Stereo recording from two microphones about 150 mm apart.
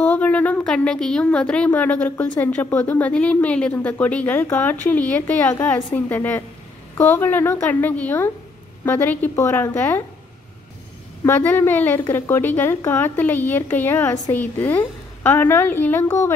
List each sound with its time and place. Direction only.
0.0 s a woman's voice: 10° left (ahead or behind)
11.2 s a woman's voice: 15° left (ahead or behind)